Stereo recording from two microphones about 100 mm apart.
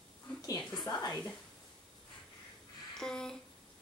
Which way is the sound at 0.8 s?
40° left (ahead or behind).